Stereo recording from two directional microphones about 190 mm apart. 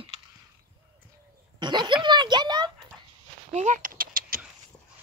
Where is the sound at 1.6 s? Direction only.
25° right (ahead or behind).